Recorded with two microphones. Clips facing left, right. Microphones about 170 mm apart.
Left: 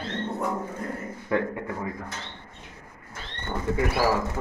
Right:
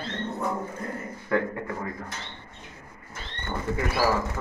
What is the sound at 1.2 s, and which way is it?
Speech, 15° left (ahead or behind).